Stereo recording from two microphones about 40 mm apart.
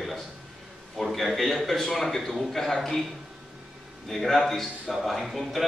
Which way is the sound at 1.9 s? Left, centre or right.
Centre.